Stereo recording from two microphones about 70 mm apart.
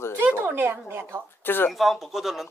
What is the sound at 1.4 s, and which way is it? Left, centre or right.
Speech, left.